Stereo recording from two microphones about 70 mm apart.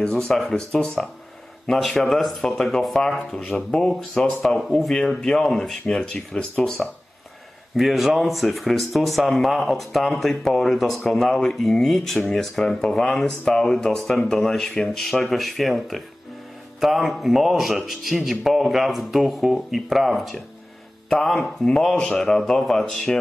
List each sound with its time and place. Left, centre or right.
0.0 s speech: centre